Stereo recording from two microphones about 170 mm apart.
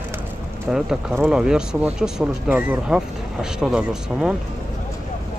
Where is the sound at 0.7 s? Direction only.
Centre (ahead or behind).